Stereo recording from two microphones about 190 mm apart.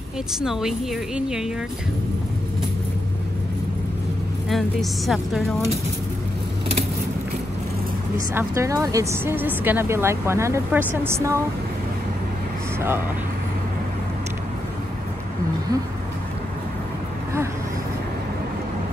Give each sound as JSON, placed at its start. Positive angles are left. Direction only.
{"t": 0.4, "sound": "a woman's voice", "side_deg": -5}
{"t": 4.5, "sound": "a woman's voice", "side_deg": 0}
{"t": 8.4, "sound": "speech", "side_deg": -15}